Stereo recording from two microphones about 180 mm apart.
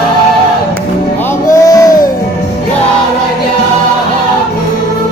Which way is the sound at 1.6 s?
20° left (ahead or behind).